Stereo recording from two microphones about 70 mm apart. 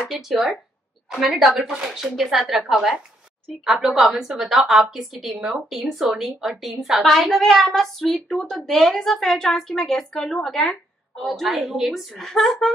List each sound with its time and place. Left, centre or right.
0.0 s a woman's voice: centre